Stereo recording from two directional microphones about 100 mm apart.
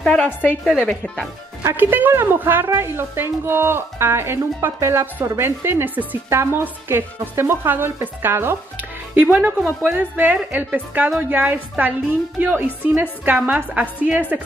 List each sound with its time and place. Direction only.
0.0 s a woman's voice: 10° left (ahead or behind)
1.6 s a woman's voice: 25° right (ahead or behind)